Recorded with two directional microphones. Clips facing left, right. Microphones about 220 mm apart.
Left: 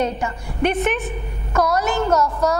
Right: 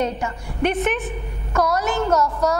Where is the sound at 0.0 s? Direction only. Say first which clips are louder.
Left 1 dB; 15° left (ahead or behind).